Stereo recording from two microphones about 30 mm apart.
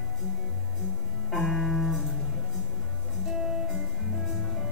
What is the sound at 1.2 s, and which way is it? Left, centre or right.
Music, centre.